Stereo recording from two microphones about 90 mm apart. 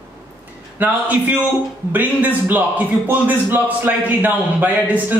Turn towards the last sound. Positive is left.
turn(degrees=-20)  # may be behind; listen again after turning